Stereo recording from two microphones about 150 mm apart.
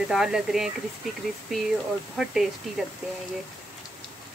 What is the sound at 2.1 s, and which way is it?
Speech, centre (ahead or behind).